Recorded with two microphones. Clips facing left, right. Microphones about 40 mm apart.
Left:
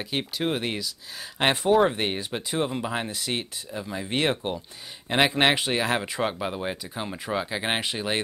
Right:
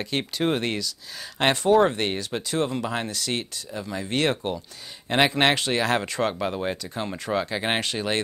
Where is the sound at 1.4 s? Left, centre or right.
Centre.